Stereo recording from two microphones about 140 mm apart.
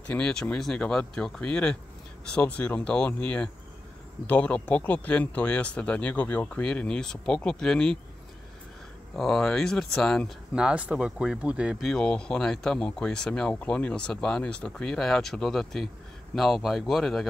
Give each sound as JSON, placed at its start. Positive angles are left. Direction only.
{"t": 0.0, "sound": "speech", "side_deg": 5}
{"t": 9.1, "sound": "speech", "side_deg": 0}